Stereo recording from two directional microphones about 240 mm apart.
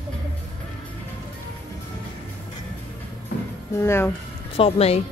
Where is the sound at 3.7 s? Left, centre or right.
Centre.